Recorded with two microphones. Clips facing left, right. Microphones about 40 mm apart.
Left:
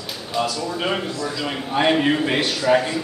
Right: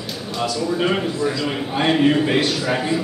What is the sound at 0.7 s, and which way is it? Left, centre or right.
A man's voice, centre.